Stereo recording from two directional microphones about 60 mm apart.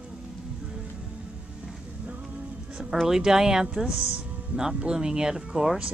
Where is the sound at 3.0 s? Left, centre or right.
Centre.